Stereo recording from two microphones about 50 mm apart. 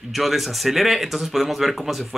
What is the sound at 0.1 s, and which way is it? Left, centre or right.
Speech, centre.